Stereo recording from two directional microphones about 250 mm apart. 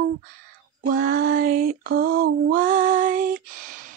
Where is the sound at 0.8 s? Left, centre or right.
Right.